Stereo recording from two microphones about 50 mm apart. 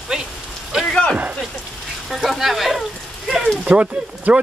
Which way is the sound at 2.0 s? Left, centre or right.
Centre.